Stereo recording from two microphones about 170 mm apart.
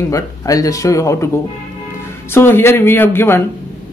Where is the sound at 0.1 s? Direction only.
20° left (ahead or behind).